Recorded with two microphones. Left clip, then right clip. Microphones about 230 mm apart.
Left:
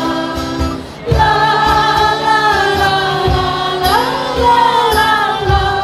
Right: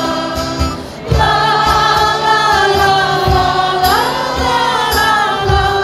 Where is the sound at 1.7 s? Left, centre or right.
Centre.